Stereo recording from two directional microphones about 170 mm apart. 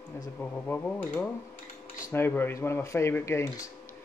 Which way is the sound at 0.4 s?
10° left (ahead or behind).